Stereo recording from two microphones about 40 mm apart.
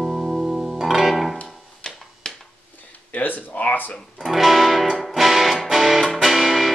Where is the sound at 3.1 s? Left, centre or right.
Left.